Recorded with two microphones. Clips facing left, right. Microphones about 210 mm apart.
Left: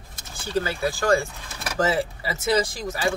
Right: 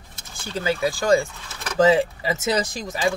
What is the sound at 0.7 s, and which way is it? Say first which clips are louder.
Speech: right 5 dB; 15° right (ahead or behind).